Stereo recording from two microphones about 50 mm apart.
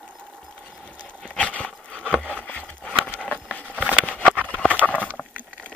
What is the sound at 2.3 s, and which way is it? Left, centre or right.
Wood, left.